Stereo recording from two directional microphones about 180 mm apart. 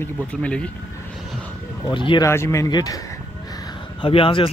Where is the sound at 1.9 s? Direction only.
25° left (ahead or behind).